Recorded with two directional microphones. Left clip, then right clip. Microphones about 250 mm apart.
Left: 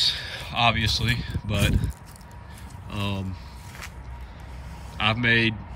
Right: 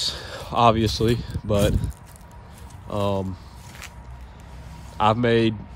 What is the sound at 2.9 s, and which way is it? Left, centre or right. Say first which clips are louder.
Speech: right 8 dB; centre.